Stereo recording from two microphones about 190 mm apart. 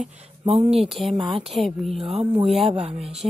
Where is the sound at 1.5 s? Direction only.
Centre (ahead or behind).